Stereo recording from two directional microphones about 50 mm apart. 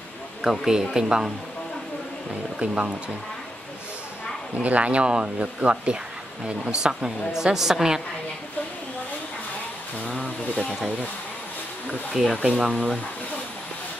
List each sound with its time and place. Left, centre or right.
0.4 s a woman's voice: centre
2.6 s speech: right
4.6 s a woman's voice: right; by 8.0 s centre
10.5 s speech: centre
12.1 s a woman's voice: centre